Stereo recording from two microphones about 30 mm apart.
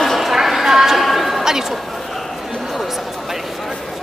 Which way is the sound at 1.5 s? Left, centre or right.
Centre.